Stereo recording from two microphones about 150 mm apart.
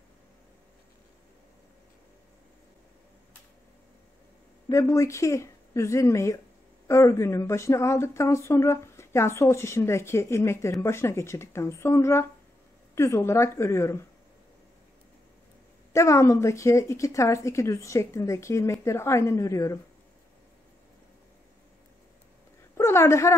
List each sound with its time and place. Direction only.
4.6 s a woman's voice: 20° left (ahead or behind)
15.9 s speech: 20° left (ahead or behind)
22.8 s a woman's voice: 15° left (ahead or behind)